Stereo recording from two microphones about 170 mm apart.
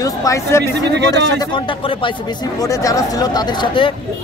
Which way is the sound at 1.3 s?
30° left (ahead or behind).